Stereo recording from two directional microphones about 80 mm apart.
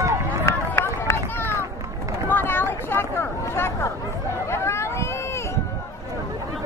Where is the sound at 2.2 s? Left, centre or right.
Left.